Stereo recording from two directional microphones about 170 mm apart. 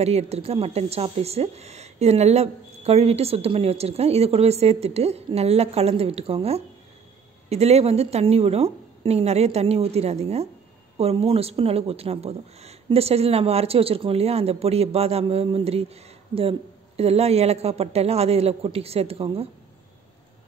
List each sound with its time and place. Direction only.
0.0 s speech: 35° right (ahead or behind)